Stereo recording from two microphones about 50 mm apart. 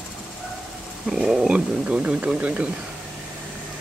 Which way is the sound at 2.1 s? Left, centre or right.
Right.